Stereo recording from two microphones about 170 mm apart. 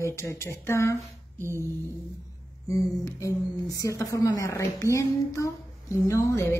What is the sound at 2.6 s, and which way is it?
A woman's voice, 20° left (ahead or behind).